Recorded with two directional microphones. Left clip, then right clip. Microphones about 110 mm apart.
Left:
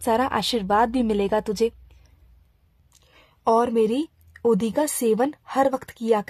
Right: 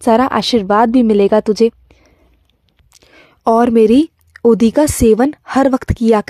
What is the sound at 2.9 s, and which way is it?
A woman's voice, 60° right (ahead or behind).